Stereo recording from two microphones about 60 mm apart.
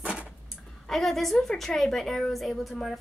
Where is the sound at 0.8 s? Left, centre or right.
Centre.